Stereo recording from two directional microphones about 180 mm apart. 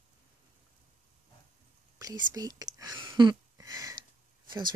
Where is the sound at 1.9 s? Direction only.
20° right (ahead or behind).